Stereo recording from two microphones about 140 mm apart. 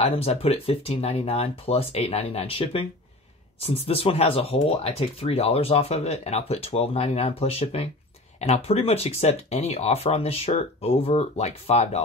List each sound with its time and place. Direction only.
0.0 s speech: 45° left (ahead or behind)